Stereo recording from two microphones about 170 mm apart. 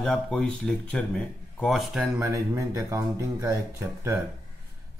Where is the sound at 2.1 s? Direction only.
20° right (ahead or behind).